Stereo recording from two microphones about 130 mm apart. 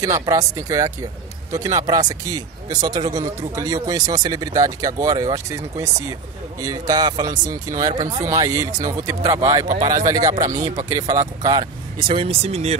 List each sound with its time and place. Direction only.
0.3 s speech: 25° right (ahead or behind); by 12.7 s 55° right (ahead or behind)